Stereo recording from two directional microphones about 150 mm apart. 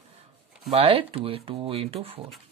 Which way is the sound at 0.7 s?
40° right (ahead or behind).